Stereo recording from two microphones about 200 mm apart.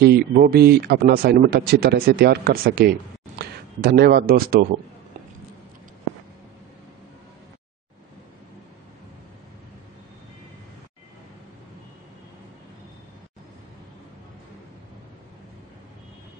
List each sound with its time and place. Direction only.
0.0 s speech: 50° right (ahead or behind)